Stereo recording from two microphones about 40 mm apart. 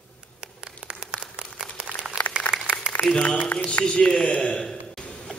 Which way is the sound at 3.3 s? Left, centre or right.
Left.